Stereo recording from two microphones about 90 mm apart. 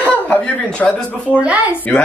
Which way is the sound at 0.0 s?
15° left (ahead or behind).